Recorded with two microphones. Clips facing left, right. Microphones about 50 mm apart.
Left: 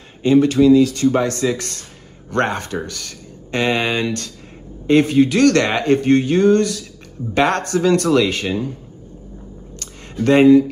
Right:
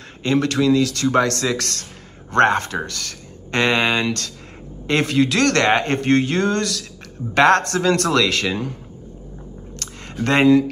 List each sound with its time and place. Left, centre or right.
0.2 s speech: right
2.3 s speech: right
10.2 s speech: right